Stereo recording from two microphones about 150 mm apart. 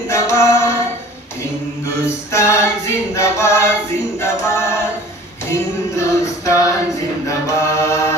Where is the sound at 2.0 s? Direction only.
20° left (ahead or behind).